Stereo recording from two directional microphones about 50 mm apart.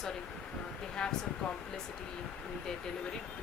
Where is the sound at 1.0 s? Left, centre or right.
Centre.